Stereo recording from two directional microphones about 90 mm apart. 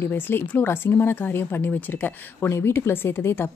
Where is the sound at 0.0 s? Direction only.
25° left (ahead or behind).